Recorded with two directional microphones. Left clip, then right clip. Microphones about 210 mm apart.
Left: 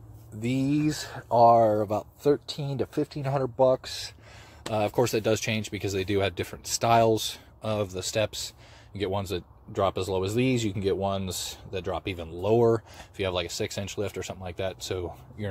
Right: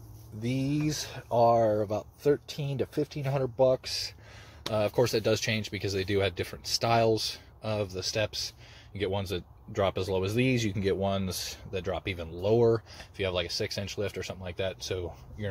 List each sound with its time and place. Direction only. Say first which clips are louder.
0.4 s speech: left 4 dB; 10° left (ahead or behind)
8.3 s speech: right 1 dB; 60° left (ahead or behind)
8.9 s speech: left 2 dB; 10° left (ahead or behind)